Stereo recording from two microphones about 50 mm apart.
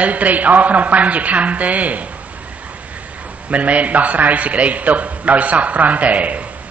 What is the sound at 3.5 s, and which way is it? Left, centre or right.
A man's voice, right.